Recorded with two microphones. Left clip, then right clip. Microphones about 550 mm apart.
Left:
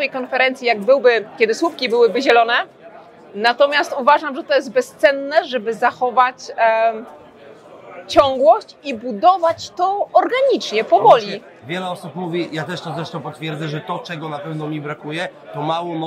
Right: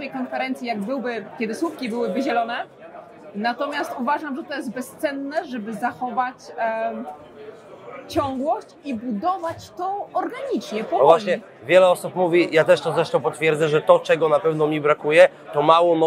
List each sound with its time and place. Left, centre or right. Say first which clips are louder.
0.0 s a woman's voice: left 10 dB; left
8.1 s a woman's voice: left 11 dB; left
11.6 s speech: right 12 dB; right